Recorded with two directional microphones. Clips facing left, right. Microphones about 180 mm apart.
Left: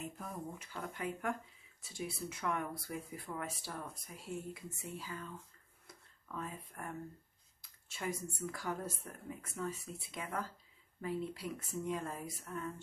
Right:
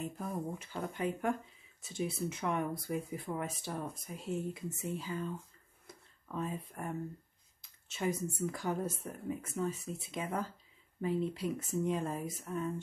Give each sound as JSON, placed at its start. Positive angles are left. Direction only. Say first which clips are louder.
{"t": 0.0, "sound": "speech", "louder": "right 6 dB", "side_deg": -30}
{"t": 5.9, "sound": "a sound", "louder": "right 3 dB", "side_deg": -20}
{"t": 7.6, "sound": "speech", "louder": "right 6 dB", "side_deg": -20}